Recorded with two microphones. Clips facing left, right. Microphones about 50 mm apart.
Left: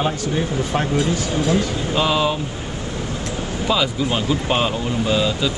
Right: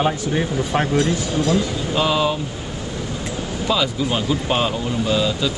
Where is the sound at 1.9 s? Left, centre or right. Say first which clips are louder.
Even; centre.